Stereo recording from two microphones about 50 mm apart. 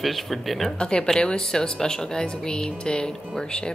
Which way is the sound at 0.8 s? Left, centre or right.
Centre.